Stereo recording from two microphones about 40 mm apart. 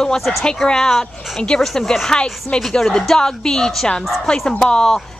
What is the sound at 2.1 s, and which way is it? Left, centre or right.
Speech, left.